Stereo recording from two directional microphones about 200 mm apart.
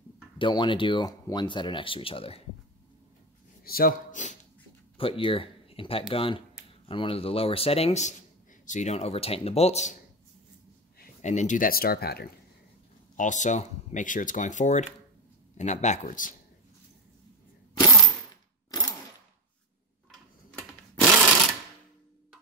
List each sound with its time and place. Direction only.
0.4 s speech: 25° left (ahead or behind)
3.6 s speech: 45° left (ahead or behind)
4.9 s speech: 25° left (ahead or behind)
11.2 s speech: 35° left (ahead or behind)
13.1 s speech: 40° left (ahead or behind)
17.7 s a sound: 20° left (ahead or behind)